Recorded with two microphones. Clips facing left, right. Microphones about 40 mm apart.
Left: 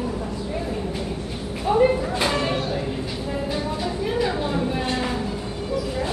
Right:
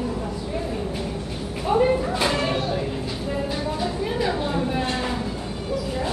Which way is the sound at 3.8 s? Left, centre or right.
Centre.